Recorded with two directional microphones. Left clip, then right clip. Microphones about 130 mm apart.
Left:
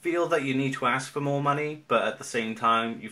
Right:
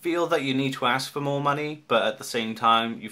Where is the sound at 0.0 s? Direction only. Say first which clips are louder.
Right 1 dB; 35° right (ahead or behind).